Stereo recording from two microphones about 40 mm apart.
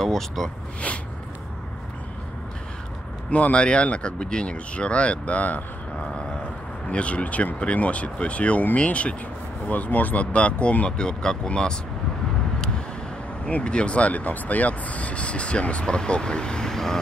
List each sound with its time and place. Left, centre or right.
0.0 s speech: centre
0.9 s speech: left
3.3 s speech: left
6.9 s speech: left
9.7 s speech: left
10.9 s speech: left
13.5 s speech: left; by 17.0 s centre